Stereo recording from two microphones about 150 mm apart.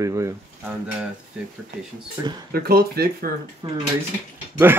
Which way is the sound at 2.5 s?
90° right.